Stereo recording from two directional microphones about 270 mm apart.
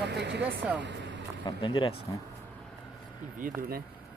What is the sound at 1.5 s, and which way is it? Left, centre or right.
Speech, centre.